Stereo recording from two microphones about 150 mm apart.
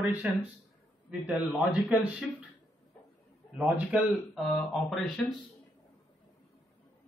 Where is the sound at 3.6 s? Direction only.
5° right (ahead or behind).